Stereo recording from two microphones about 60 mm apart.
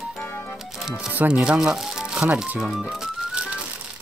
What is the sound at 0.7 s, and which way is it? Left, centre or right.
Speech, centre.